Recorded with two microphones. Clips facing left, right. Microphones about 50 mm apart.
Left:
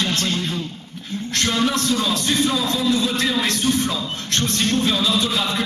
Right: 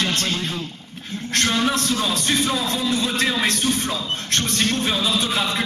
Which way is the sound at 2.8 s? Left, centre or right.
Centre.